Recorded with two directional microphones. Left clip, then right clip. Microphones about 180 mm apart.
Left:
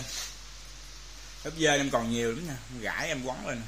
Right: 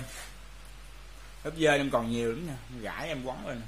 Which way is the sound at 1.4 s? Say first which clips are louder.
Even; 5° right (ahead or behind).